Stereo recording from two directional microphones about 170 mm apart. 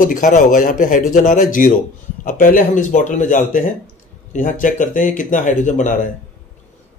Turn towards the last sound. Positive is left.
turn(degrees=50)  # may be behind; listen again after turning